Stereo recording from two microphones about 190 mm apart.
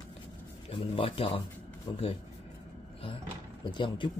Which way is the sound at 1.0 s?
30° left (ahead or behind).